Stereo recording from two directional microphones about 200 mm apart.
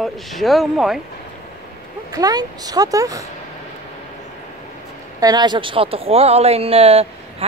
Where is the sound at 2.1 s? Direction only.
20° right (ahead or behind).